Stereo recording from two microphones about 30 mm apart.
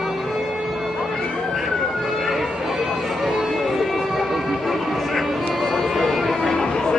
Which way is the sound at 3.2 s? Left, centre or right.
Centre.